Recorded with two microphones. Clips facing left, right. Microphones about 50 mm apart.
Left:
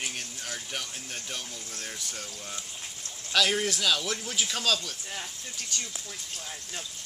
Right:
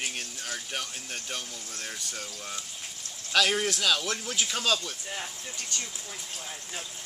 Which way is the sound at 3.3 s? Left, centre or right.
Centre.